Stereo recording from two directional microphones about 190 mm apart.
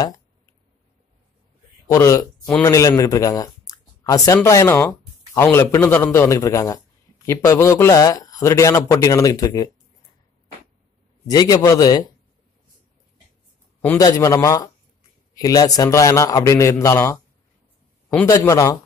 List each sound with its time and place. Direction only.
1.9 s speech: 15° left (ahead or behind)
11.2 s a man's voice: 20° left (ahead or behind)
13.7 s speech: 15° left (ahead or behind)